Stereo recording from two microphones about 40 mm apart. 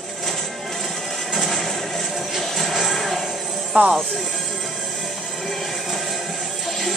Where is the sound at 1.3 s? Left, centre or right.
Centre.